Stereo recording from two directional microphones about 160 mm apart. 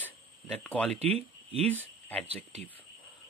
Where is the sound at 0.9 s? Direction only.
40° right (ahead or behind).